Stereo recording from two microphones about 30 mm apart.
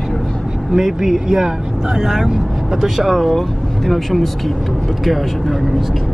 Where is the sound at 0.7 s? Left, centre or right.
Centre.